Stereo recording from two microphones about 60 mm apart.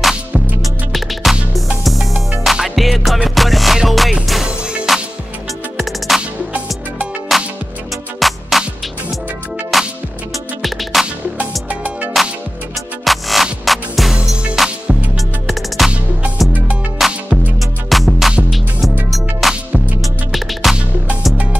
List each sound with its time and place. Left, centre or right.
1.2 s music: centre
7.3 s music: centre
9.7 s music: centre
11.7 s music: right
13.0 s music: centre
14.1 s music: centre
15.1 s music: centre
17.0 s music: centre